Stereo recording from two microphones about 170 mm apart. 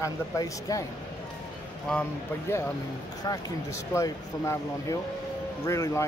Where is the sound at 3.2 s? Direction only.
20° left (ahead or behind).